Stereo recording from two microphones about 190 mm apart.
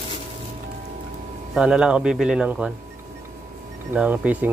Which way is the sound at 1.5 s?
5° right (ahead or behind).